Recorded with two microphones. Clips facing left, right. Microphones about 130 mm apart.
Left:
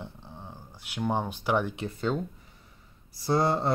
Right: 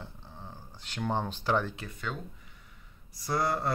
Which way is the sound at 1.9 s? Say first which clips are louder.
Left 9 dB; 30° left (ahead or behind).